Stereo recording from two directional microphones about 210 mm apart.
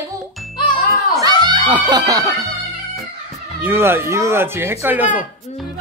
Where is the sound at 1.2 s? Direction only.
20° right (ahead or behind).